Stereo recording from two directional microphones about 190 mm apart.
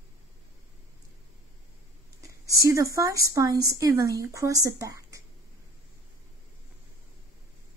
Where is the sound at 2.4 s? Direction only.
15° right (ahead or behind).